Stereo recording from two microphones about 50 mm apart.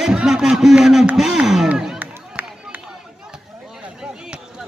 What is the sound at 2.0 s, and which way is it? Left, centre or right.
Run, right.